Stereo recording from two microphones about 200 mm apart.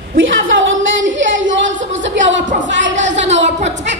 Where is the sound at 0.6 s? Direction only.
70° right (ahead or behind).